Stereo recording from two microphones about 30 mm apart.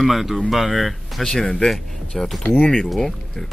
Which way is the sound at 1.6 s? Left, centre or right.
Centre.